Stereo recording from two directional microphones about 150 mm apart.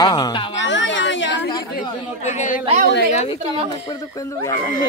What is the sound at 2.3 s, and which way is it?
Speech, 55° left (ahead or behind).